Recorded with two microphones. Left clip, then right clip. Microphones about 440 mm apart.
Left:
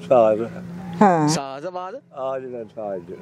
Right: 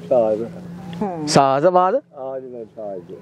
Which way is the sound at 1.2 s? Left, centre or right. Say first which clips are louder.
Right 10 dB; right.